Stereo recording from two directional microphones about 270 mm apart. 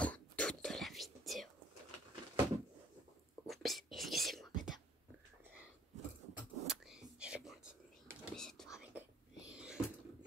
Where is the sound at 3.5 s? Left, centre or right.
Centre.